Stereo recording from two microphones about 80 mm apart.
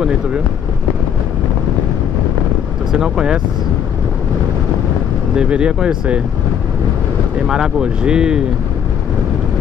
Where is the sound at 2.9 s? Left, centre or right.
Centre.